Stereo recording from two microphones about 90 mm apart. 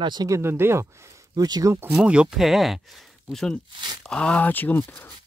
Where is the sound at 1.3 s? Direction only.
45° right (ahead or behind).